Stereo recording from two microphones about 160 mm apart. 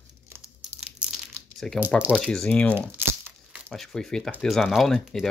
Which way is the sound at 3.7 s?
5° left (ahead or behind).